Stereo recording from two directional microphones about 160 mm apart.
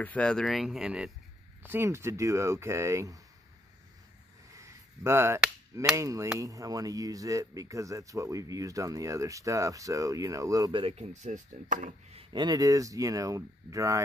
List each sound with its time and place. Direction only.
0.0 s speech: 10° left (ahead or behind); by 3.2 s 20° right (ahead or behind)
4.6 s a sound: 15° right (ahead or behind)
5.9 s speech: 20° right (ahead or behind); by 12.2 s 50° right (ahead or behind)
12.2 s speech: 30° right (ahead or behind)